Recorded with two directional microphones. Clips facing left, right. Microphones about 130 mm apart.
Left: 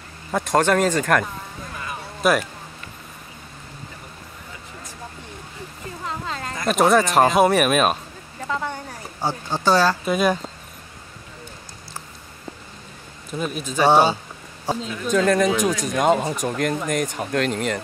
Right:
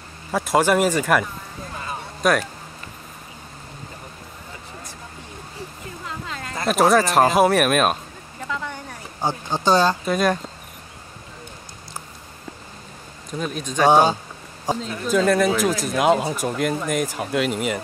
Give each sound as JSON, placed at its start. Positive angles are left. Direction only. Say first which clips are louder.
{"t": 0.3, "sound": "speech", "louder": "even", "side_deg": -5}
{"t": 1.7, "sound": "a sound", "louder": "right 2 dB", "side_deg": -30}
{"t": 2.2, "sound": "speech", "louder": "even", "side_deg": 5}
{"t": 6.0, "sound": "a sound", "louder": "left 4 dB", "side_deg": 40}
{"t": 6.7, "sound": "speech", "louder": "even", "side_deg": 0}
{"t": 8.5, "sound": "a sound", "louder": "left 3 dB", "side_deg": 40}
{"t": 9.2, "sound": "speech", "louder": "even", "side_deg": -15}
{"t": 10.0, "sound": "speech", "louder": "even", "side_deg": 5}
{"t": 13.3, "sound": "speech", "louder": "left 1 dB", "side_deg": 5}
{"t": 14.7, "sound": "speech", "louder": "right 1 dB", "side_deg": -15}
{"t": 15.0, "sound": "speech", "louder": "even", "side_deg": -5}